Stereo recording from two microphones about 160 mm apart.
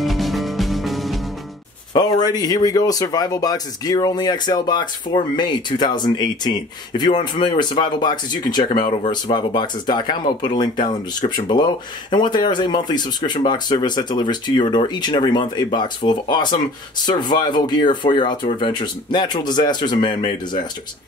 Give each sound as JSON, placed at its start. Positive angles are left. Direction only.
{"t": 0.0, "sound": "music", "side_deg": 0}
{"t": 2.0, "sound": "speech", "side_deg": 25}